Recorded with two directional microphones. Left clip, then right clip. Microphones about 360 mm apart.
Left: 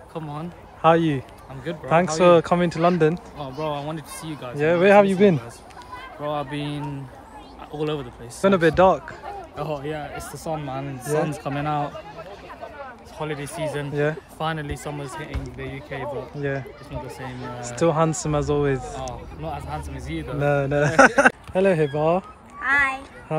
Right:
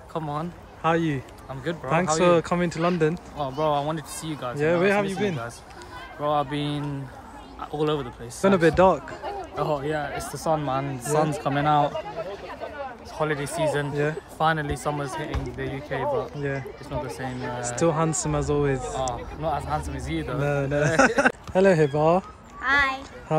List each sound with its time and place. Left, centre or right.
0.1 s speech: centre
6.2 s speech: centre
11.9 s a sound: right
13.2 s speech: centre
16.9 s speech: right
17.6 s speech: centre